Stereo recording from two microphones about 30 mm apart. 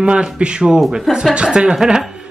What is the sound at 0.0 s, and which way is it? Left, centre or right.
Speech, right.